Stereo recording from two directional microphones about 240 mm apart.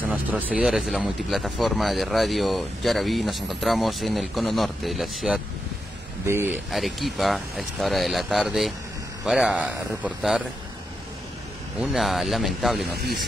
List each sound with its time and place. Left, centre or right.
0.1 s speech: centre
6.7 s speech: centre
11.8 s speech: centre
12.9 s speech: right